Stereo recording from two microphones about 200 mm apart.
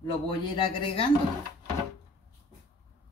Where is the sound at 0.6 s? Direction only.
25° left (ahead or behind).